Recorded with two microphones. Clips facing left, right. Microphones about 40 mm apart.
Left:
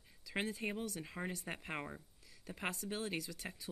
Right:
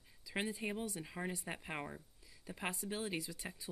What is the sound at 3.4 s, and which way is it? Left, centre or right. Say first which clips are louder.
Speech: even; centre.